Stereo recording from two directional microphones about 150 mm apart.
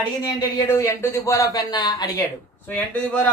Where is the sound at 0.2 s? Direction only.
20° left (ahead or behind).